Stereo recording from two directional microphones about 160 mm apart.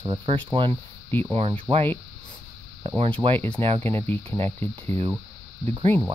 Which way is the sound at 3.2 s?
35° right (ahead or behind).